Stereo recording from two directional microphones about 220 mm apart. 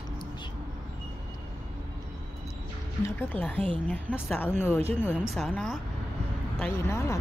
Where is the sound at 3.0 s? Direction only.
10° left (ahead or behind).